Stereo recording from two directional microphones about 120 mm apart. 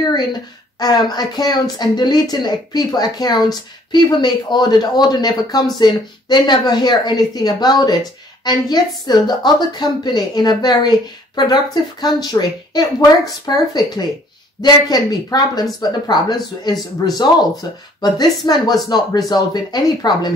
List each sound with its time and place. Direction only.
0.1 s a woman's voice: 35° left (ahead or behind)